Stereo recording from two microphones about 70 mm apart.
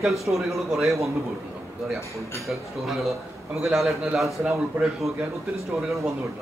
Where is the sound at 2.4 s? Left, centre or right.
Centre.